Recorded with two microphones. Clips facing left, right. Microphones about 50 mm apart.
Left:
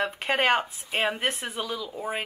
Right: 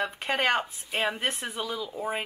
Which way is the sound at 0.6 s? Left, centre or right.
Centre.